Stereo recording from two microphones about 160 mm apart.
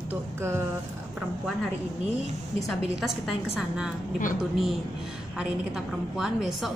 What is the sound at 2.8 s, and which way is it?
A woman's voice, 5° right (ahead or behind).